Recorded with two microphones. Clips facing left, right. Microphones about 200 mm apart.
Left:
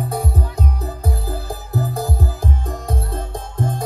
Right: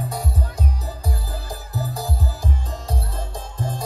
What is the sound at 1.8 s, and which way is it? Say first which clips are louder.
Music: left 5 dB; 55° left (ahead or behind).